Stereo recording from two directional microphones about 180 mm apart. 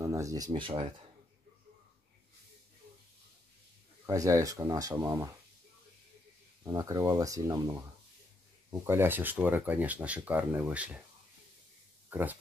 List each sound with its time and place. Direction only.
0.0 s speech: 15° right (ahead or behind)
0.5 s speech: 30° right (ahead or behind)
4.0 s speech: 20° right (ahead or behind)
6.6 s speech: 15° right (ahead or behind)
12.1 s speech: 10° right (ahead or behind)